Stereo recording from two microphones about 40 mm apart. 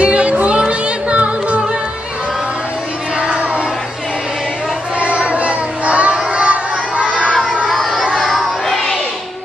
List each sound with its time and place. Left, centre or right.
0.0 s music: right
4.9 s child singing: right
5.9 s music: right
6.3 s a sound: right
7.1 s crowd: left
7.7 s a sound: centre
8.2 s children playing: centre